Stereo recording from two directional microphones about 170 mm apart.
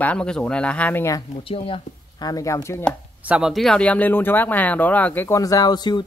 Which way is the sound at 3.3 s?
Centre (ahead or behind).